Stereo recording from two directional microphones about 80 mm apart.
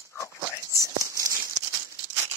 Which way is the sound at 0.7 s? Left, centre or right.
Right.